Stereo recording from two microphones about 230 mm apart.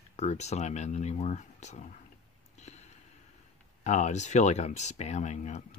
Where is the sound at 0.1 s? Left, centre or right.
Left.